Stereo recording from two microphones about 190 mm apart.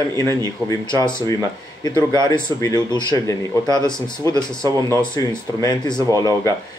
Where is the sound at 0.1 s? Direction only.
15° left (ahead or behind).